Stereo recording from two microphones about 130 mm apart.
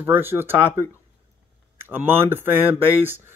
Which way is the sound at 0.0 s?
15° right (ahead or behind).